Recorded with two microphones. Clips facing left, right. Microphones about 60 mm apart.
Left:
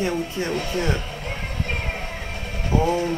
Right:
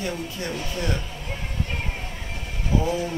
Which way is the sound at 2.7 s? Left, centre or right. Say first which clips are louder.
Left 3 dB; left.